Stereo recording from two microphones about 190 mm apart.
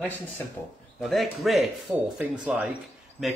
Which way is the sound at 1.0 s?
Centre (ahead or behind).